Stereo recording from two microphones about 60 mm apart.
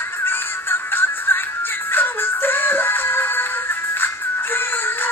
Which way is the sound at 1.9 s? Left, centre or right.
Left.